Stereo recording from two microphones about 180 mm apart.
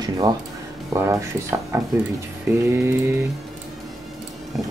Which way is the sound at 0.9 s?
15° right (ahead or behind).